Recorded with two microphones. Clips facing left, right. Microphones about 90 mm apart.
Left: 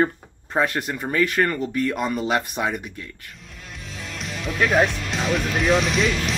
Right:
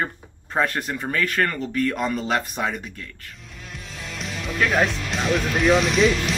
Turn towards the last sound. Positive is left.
turn(degrees=0)  # may be behind; listen again after turning